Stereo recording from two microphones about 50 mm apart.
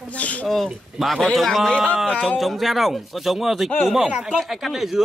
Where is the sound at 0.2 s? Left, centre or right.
Left.